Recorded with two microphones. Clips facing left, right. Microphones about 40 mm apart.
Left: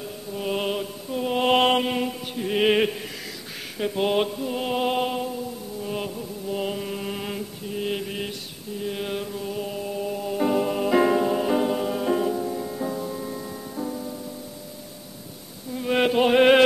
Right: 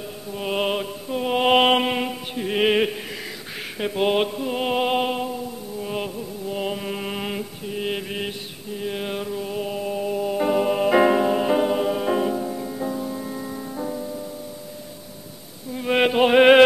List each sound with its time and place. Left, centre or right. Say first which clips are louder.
0.3 s mantra: right 3 dB; right; by 3.0 s centre
3.8 s mantra: right 2 dB; centre
6.9 s mantra: right 2 dB; right
8.8 s music: right 2 dB; centre
15.7 s music: right 2 dB; centre